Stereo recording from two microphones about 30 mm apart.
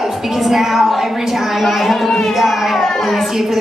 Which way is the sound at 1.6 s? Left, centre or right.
Centre.